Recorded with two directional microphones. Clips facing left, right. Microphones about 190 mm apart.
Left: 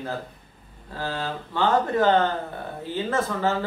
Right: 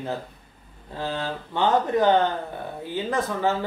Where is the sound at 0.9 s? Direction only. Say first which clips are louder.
Right 1 dB; 20° right (ahead or behind).